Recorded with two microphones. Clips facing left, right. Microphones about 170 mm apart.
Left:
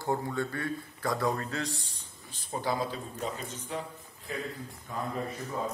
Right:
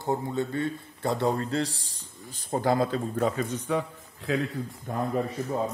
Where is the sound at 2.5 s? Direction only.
50° right (ahead or behind).